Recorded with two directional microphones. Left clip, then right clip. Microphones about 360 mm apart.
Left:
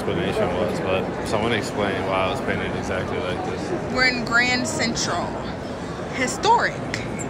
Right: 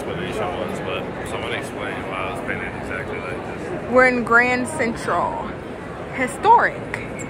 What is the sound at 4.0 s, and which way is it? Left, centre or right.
A woman's voice, centre.